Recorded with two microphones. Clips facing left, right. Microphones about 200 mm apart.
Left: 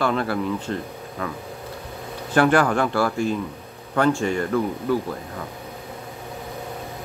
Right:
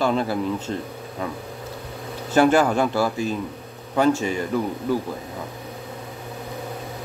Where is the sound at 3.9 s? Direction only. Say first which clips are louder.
Even; 10° right (ahead or behind).